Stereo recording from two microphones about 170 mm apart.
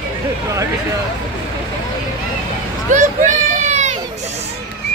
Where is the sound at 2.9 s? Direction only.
45° right (ahead or behind).